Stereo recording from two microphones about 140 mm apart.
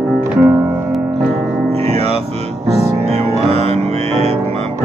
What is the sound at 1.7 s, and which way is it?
Music, 45° right (ahead or behind).